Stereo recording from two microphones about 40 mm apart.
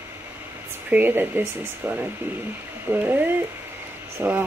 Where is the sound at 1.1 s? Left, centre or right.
Right.